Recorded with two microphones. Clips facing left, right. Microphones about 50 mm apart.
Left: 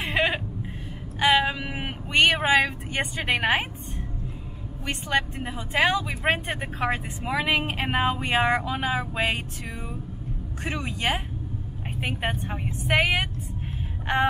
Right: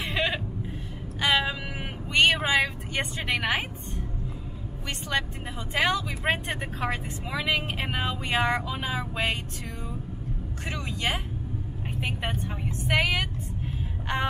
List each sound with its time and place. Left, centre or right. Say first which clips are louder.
0.1 s a sound: left 4 dB; left
1.2 s vehicle: left 4 dB; centre
4.8 s speech: left 4 dB; centre
6.8 s speech: left 3 dB; left
10.6 s a woman's voice: left 3 dB; centre
12.3 s speech: left 2 dB; left